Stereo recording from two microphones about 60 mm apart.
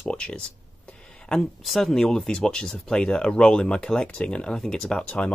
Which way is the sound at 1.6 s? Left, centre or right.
Centre.